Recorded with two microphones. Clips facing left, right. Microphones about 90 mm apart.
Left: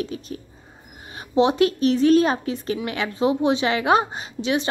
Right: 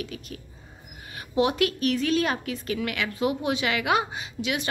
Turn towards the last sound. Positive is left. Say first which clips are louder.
# left 6 dB
turn(degrees=30)  # may be behind; listen again after turning